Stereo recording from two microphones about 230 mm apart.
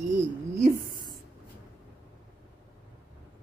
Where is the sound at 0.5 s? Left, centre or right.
Right.